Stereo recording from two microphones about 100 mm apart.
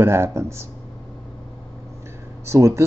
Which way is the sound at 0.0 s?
25° right (ahead or behind).